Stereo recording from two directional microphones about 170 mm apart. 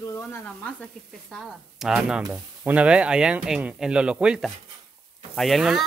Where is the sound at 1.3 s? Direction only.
Centre (ahead or behind).